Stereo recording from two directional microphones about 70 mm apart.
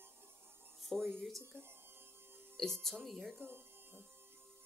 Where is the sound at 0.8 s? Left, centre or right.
Centre.